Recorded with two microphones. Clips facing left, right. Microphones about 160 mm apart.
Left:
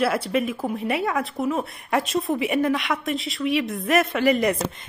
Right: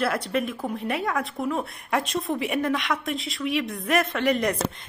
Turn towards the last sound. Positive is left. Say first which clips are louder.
# left 3 dB
turn(degrees=5)  # may be behind; listen again after turning